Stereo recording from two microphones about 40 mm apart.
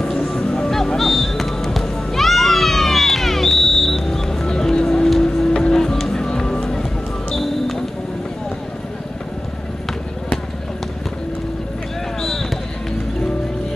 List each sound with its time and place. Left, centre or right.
0.0 s honk: centre
0.4 s music: centre
12.2 s basketball bounce: centre